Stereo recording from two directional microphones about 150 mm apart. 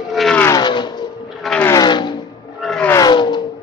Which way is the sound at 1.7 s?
25° left (ahead or behind).